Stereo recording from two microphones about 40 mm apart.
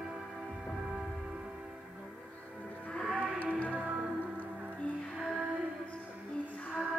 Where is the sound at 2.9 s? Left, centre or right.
Centre.